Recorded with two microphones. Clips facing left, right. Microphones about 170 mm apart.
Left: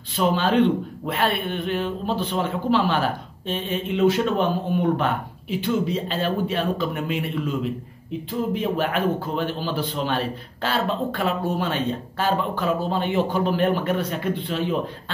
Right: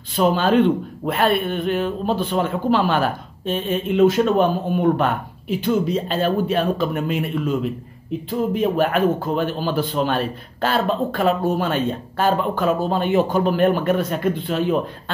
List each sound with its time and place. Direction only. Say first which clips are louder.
0.1 s speech: right 4 dB; 45° right (ahead or behind)
8.5 s speech: right 7 dB; 45° right (ahead or behind)